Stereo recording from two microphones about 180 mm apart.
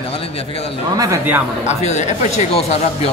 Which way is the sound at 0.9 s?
20° right (ahead or behind).